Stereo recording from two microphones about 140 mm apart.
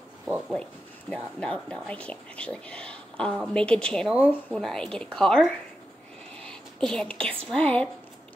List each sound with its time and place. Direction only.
0.2 s speech: 5° right (ahead or behind)
1.1 s speech: 5° left (ahead or behind)